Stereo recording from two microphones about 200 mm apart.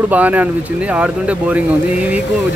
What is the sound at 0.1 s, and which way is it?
Speech, 5° right (ahead or behind).